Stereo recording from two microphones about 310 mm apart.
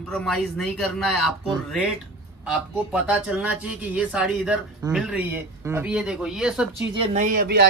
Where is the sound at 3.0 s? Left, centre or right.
Centre.